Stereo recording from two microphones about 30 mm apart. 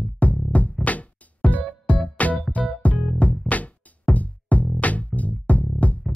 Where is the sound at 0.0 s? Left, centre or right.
Left.